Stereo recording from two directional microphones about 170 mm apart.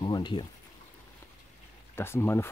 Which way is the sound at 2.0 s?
15° left (ahead or behind).